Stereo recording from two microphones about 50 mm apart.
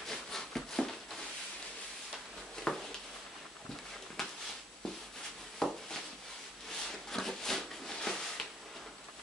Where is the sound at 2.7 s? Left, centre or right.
Centre.